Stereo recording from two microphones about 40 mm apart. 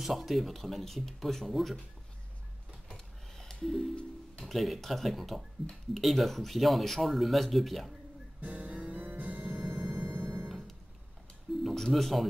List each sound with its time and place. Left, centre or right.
0.0 s speech: centre
2.9 s a sound: centre
4.4 s speech: centre
8.5 s music: right
8.9 s music: right
9.9 s music: right
11.5 s speech: centre